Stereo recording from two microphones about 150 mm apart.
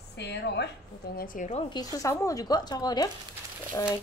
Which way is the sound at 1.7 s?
25° left (ahead or behind).